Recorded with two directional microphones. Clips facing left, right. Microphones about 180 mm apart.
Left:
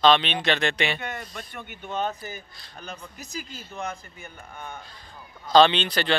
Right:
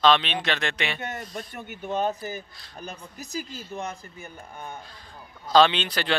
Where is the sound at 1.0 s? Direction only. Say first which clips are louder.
Right 1 dB; 40° right (ahead or behind).